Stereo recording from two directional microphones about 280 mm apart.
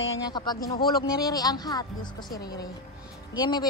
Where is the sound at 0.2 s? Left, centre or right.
Centre.